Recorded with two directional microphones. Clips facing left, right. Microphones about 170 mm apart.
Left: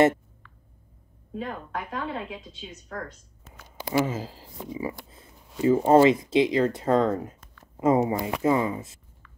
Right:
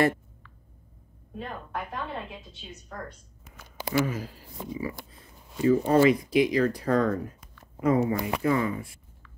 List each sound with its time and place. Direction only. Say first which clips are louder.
1.3 s a woman's voice: left 3 dB; 90° left
3.9 s speech: left 2 dB; 25° left (ahead or behind)